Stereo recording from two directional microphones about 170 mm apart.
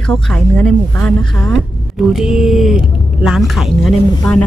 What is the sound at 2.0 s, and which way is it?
Speech, 5° right (ahead or behind).